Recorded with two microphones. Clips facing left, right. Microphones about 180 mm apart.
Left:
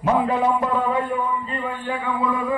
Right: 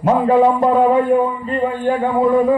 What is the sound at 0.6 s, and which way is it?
Music, 40° right (ahead or behind).